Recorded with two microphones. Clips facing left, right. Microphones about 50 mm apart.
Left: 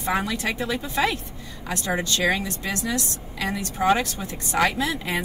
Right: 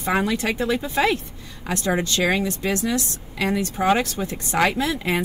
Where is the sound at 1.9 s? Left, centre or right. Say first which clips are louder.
Right 2 dB; right.